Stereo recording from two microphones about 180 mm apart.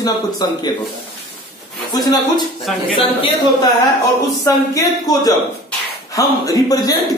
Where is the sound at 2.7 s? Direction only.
Centre (ahead or behind).